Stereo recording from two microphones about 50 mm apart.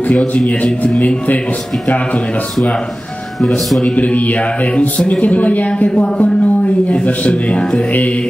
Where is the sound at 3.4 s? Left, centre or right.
Centre.